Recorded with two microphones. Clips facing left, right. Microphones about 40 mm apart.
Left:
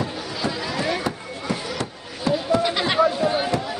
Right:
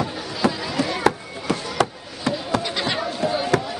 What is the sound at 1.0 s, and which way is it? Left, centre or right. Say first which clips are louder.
Chop: right 6 dB; right.